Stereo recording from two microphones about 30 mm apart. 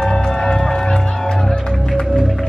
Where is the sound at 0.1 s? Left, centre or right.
Left.